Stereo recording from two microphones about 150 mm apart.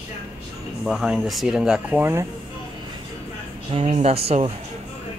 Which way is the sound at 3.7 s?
40° right (ahead or behind).